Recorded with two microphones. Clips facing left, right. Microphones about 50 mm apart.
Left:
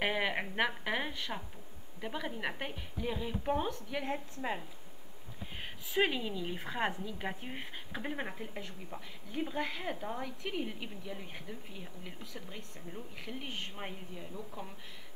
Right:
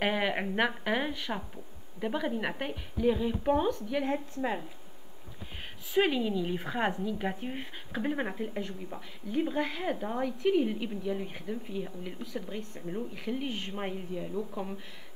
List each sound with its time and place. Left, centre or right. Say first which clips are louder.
0.0 s a woman's voice: right 4 dB; centre
5.9 s a woman's voice: right 5 dB; centre
10.2 s a woman's voice: right 11 dB; centre
13.7 s a woman's voice: right 8 dB; centre